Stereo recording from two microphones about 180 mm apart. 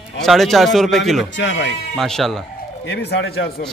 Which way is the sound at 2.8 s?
70° left (ahead or behind).